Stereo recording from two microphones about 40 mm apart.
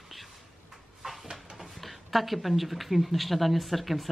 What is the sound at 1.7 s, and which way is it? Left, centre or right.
Speech, centre.